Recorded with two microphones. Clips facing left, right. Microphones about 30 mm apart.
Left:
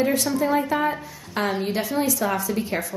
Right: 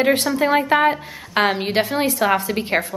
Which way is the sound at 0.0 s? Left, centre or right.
Right.